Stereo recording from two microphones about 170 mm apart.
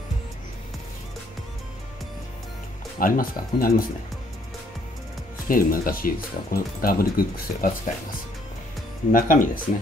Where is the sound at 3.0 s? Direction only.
55° left (ahead or behind).